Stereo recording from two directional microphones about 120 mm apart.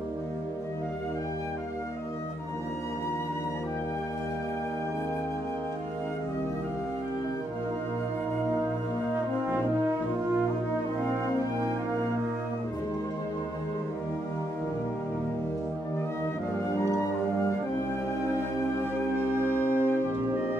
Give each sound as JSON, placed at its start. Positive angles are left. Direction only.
{"t": 19.1, "sound": "music", "side_deg": -20}